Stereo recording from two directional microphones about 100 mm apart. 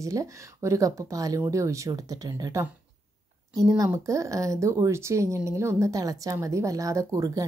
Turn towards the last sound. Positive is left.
turn(degrees=-30)  # may be behind; listen again after turning